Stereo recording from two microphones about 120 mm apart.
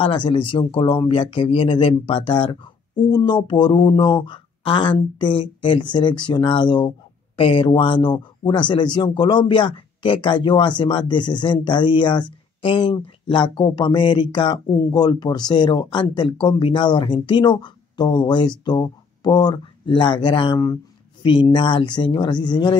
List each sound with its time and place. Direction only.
0.0 s speech: 50° left (ahead or behind)
14.7 s speech: 30° left (ahead or behind)